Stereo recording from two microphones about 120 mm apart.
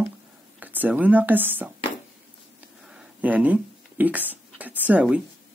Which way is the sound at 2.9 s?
10° right (ahead or behind).